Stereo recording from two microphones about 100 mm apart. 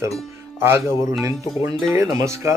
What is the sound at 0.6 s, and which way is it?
Speech, 25° right (ahead or behind).